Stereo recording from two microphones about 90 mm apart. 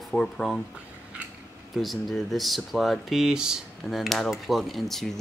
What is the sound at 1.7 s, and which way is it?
Speech, centre (ahead or behind).